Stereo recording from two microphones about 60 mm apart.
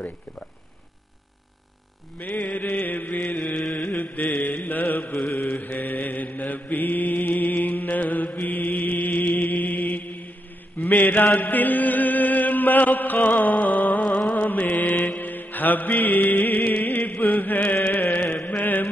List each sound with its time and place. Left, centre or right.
2.2 s mantra: centre
2.6 s chant: left
3.3 s music: left
4.4 s mantra: left
11.2 s chant: left
11.5 s chant: left
14.0 s a sound: centre
14.3 s mantra: left
15.1 s music: left
17.3 s chant: left